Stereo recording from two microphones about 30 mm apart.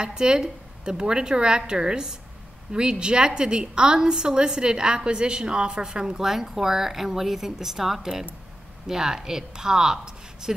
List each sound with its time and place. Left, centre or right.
0.0 s a woman's voice: right